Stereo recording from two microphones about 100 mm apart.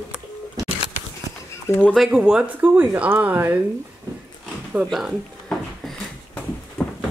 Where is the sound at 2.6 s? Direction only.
20° right (ahead or behind).